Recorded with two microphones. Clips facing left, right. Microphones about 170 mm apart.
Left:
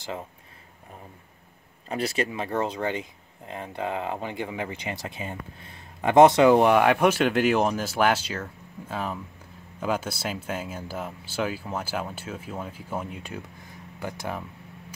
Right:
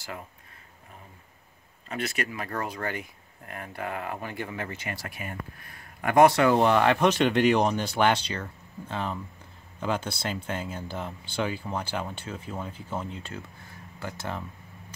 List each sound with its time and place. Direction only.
1.9 s speech: 35° left (ahead or behind); by 14.4 s 10° left (ahead or behind)